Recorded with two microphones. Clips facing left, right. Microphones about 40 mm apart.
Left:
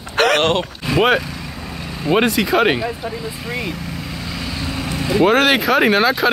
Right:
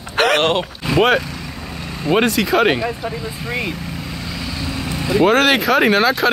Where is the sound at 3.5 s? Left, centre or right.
Right.